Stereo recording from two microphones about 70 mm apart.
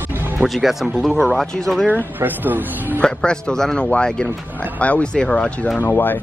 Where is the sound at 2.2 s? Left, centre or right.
Right.